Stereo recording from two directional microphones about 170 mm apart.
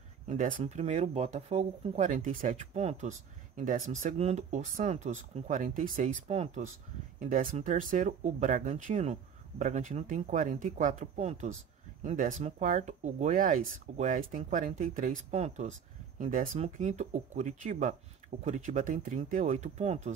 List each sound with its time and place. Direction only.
0.3 s speech: 45° right (ahead or behind)
7.2 s speech: 50° right (ahead or behind)